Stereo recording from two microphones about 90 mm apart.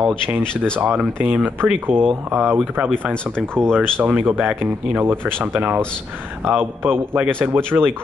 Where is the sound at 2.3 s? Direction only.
25° right (ahead or behind).